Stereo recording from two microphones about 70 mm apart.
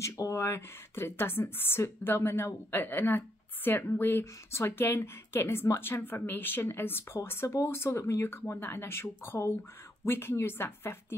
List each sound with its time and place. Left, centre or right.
0.0 s a woman's voice: left